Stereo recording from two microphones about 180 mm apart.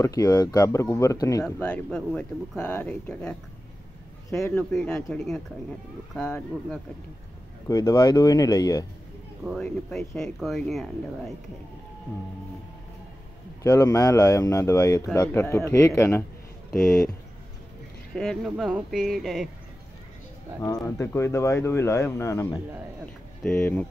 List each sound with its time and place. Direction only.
0.0 s speech: 20° left (ahead or behind)
1.4 s speech: 5° left (ahead or behind)
4.4 s speech: 10° left (ahead or behind)
7.6 s speech: 20° left (ahead or behind)
9.4 s speech: centre (ahead or behind)
13.6 s speech: 15° left (ahead or behind)
18.1 s speech: centre (ahead or behind)
20.6 s speech: 20° left (ahead or behind)